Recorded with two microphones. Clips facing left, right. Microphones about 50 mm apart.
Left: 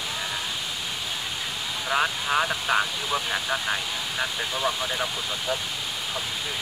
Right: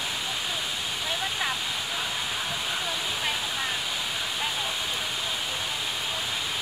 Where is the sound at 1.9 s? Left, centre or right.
Left.